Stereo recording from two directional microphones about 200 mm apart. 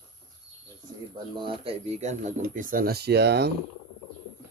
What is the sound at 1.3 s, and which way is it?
Speech, 25° right (ahead or behind).